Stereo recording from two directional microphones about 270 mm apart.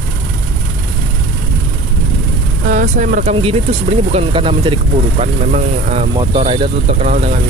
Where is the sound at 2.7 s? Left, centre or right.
Right.